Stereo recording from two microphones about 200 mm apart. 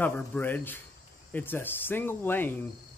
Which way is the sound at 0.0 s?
10° left (ahead or behind).